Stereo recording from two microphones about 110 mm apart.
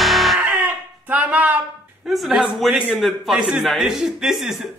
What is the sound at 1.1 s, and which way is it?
Speech, 15° right (ahead or behind).